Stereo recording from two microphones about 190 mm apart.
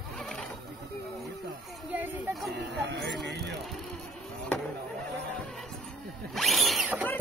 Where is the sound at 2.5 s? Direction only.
65° right (ahead or behind).